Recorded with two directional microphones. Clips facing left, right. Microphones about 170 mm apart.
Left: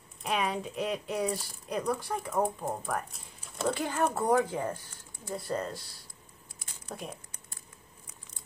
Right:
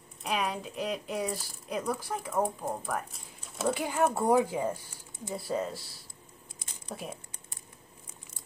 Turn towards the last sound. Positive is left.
turn(degrees=-5)  # may be behind; listen again after turning